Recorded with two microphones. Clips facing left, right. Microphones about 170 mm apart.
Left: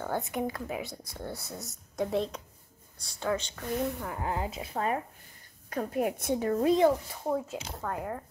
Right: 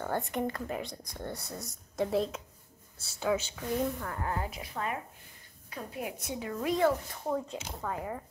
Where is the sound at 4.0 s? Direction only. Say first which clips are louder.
Left 2 dB; 15° left (ahead or behind); by 5.0 s 35° left (ahead or behind).